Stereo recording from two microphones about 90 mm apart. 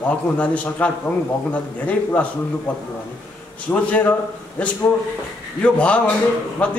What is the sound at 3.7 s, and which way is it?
A man's voice, 20° left (ahead or behind).